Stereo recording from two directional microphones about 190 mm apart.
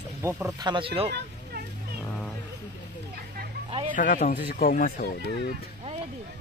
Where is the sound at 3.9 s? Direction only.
45° left (ahead or behind).